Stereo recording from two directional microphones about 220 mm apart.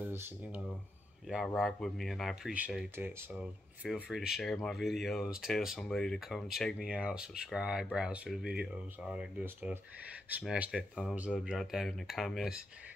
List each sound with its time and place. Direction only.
0.0 s speech: 10° right (ahead or behind)